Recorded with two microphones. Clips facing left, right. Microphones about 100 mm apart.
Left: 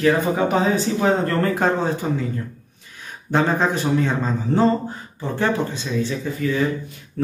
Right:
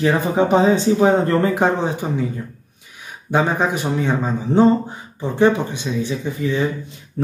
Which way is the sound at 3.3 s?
15° right (ahead or behind).